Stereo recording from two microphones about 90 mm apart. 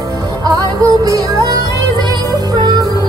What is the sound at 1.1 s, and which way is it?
Music, 45° right (ahead or behind).